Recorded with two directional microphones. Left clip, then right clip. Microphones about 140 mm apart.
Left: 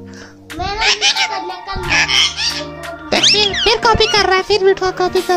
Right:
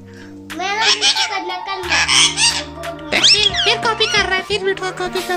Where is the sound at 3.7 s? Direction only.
85° left; by 5.1 s 65° left (ahead or behind).